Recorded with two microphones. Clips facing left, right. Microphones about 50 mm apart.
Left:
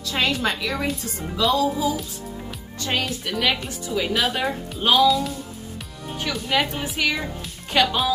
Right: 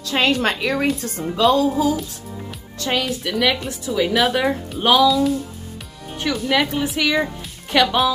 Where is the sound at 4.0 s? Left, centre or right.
Right.